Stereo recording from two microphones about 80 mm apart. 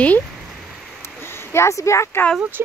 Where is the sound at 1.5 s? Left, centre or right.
Left.